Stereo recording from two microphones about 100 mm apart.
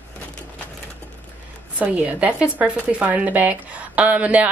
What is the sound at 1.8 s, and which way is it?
A woman's voice, 15° right (ahead or behind).